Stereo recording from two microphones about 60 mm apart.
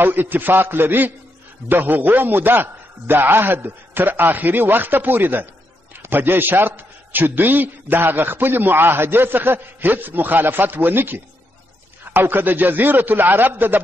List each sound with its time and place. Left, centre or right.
0.0 s a man's voice: right